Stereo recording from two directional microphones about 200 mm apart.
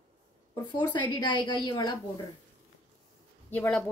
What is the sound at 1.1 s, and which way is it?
Speech, 20° left (ahead or behind).